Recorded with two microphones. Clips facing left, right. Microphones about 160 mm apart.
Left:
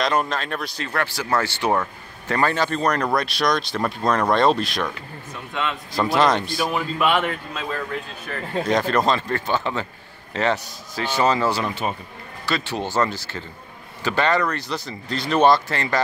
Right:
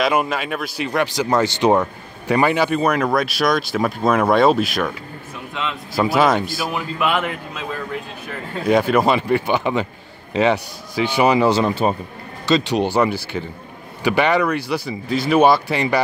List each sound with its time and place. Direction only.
0.0 s a man's voice: 10° right (ahead or behind)
0.8 s a man's voice: 15° right (ahead or behind)
11.6 s speech: 35° right (ahead or behind)
12.4 s a man's voice: 20° right (ahead or behind)